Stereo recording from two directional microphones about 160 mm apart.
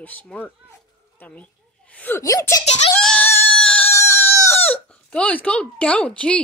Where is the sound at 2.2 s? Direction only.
20° left (ahead or behind).